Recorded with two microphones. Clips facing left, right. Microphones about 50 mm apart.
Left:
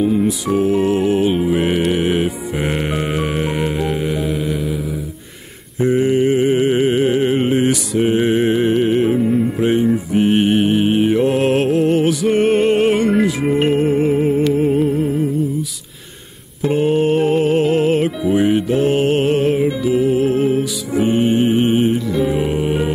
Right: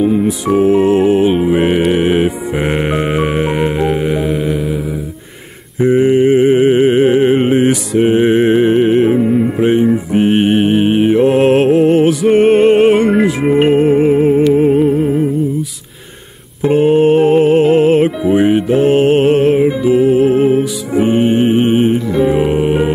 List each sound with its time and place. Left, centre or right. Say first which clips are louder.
0.0 s music: right 3 dB; centre
5.8 s music: right 5 dB; centre
16.6 s music: right 6 dB; centre